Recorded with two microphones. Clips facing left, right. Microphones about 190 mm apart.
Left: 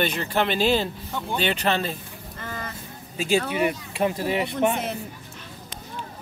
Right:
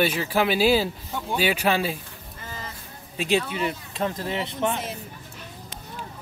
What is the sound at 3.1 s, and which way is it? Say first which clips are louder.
Speech: left 1 dB; centre (ahead or behind).